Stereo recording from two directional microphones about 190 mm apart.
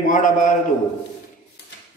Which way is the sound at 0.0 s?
45° left (ahead or behind).